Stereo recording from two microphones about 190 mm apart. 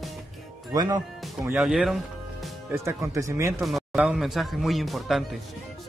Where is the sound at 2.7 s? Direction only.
15° right (ahead or behind).